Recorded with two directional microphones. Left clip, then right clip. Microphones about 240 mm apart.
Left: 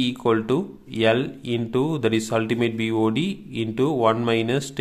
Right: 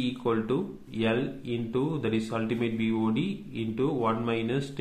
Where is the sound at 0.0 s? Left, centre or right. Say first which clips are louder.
Left 7 dB; left.